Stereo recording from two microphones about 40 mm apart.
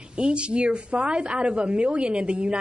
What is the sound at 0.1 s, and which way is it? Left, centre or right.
A woman's voice, right.